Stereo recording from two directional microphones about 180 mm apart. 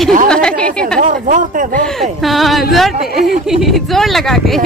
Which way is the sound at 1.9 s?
Centre (ahead or behind).